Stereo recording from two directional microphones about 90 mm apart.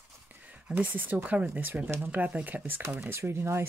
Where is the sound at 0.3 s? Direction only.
20° right (ahead or behind).